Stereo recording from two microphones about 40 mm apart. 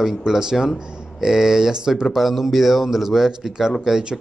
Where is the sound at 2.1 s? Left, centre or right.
Centre.